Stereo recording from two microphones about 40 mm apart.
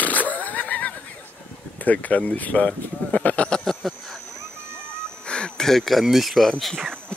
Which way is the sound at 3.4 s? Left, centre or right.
Centre.